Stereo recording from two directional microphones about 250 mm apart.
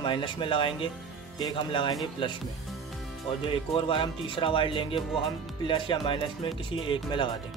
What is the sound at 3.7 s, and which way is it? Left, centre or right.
Speech, centre.